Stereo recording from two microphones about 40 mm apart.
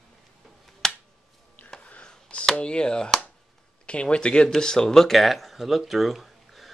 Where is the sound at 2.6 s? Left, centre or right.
Left.